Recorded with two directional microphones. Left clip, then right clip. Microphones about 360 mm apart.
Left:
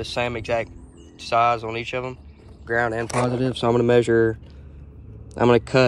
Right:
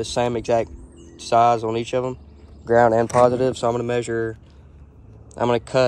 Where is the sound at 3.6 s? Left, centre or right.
Left.